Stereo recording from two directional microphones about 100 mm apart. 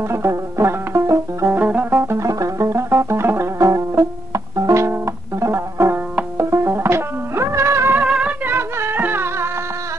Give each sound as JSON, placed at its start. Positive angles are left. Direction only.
{"t": 0.1, "sound": "music", "side_deg": -25}
{"t": 1.5, "sound": "music", "side_deg": -15}
{"t": 8.0, "sound": "music", "side_deg": -10}